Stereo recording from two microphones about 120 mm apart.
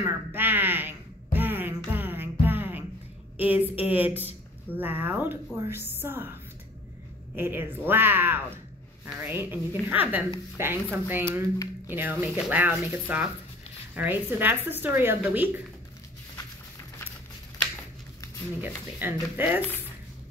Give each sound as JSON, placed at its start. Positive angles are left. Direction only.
{"t": 0.0, "sound": "a sound", "side_deg": -15}
{"t": 3.3, "sound": "a woman's voice", "side_deg": -15}
{"t": 7.3, "sound": "a woman's voice", "side_deg": -15}
{"t": 18.6, "sound": "a woman's voice", "side_deg": -15}